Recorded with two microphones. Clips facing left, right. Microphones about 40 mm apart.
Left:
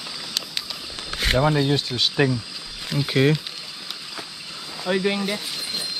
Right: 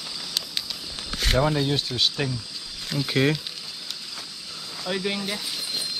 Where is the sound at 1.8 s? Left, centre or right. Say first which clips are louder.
Left 1 dB; centre.